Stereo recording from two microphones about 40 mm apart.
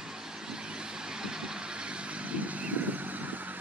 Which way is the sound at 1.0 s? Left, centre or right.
Centre.